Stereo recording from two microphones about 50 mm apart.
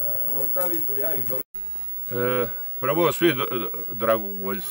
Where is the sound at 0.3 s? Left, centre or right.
Right.